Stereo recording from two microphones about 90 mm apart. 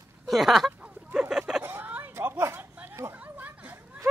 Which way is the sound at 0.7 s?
15° right (ahead or behind).